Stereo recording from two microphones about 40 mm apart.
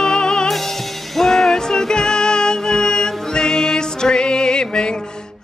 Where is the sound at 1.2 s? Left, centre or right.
Centre.